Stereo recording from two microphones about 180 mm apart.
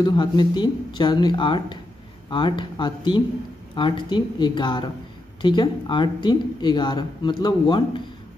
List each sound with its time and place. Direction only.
0.0 s speech: 25° left (ahead or behind)